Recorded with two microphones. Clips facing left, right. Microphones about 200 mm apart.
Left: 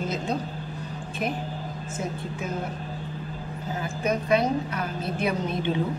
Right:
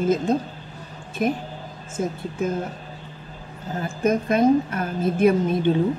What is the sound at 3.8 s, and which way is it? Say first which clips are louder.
A woman's voice: right 6 dB; 45° right (ahead or behind).